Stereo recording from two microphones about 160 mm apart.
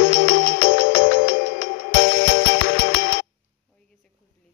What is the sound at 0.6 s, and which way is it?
Music, 75° left (ahead or behind).